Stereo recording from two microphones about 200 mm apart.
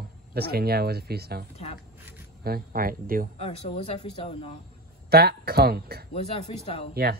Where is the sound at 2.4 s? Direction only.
50° right (ahead or behind).